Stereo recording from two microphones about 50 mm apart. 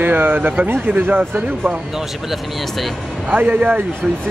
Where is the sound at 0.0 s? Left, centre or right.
Right.